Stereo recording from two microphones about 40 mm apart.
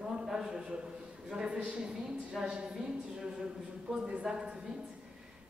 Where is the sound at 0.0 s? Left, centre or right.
Centre.